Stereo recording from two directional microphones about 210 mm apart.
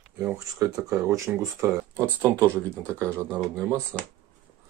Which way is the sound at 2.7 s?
5° left (ahead or behind).